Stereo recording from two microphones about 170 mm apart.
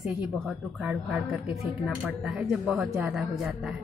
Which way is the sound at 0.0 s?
5° right (ahead or behind).